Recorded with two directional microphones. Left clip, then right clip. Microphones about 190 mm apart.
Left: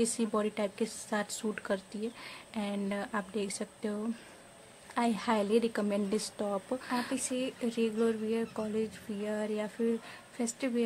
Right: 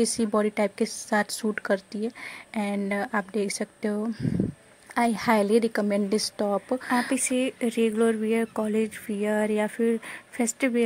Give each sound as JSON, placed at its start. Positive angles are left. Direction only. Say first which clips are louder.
{"t": 0.0, "sound": "a woman's voice", "louder": "right 7 dB", "side_deg": -35}